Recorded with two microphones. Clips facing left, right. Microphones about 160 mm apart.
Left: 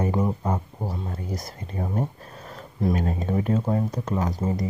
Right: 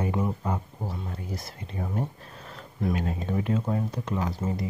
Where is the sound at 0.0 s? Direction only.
40° left (ahead or behind).